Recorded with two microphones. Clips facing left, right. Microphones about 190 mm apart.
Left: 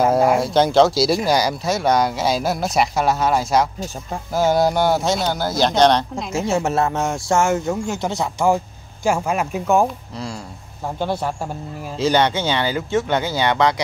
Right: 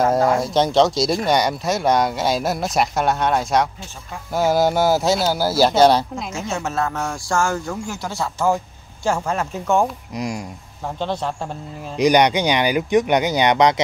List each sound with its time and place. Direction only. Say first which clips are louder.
0.0 s speech: left 1 dB; 5° left (ahead or behind)
6.3 s speech: left 6 dB; 30° left (ahead or behind); by 9.8 s 10° left (ahead or behind)
10.1 s speech: right 4 dB; 15° right (ahead or behind)
11.0 s speech: left 1 dB; 10° left (ahead or behind)
12.0 s speech: right 3 dB; 15° right (ahead or behind)